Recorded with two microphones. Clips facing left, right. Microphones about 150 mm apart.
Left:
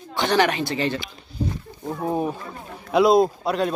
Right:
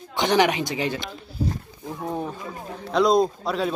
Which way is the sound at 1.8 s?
25° left (ahead or behind).